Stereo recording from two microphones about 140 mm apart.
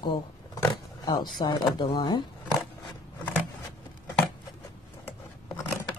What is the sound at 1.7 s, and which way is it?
Speech, 35° left (ahead or behind).